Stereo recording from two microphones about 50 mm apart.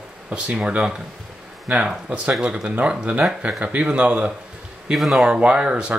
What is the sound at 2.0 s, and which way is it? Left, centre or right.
Speech, right.